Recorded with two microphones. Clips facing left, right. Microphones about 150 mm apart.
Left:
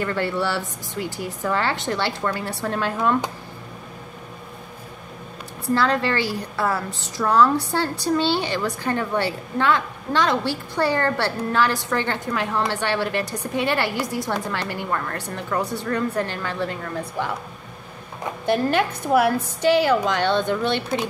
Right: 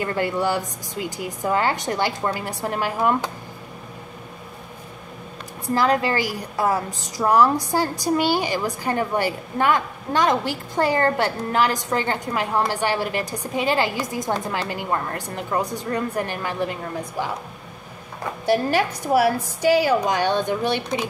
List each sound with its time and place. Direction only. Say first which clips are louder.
0.0 s a woman's voice: right 1 dB; 15° right (ahead or behind)
5.8 s a woman's voice: right 2 dB; 15° right (ahead or behind)
7.7 s a woman's voice: right 1 dB; 10° right (ahead or behind)
18.7 s a woman's voice: even; 55° left (ahead or behind)
19.2 s a woman's voice: even; 10° right (ahead or behind)